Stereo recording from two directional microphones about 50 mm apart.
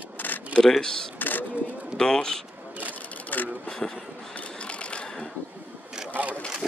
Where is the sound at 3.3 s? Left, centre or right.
Left.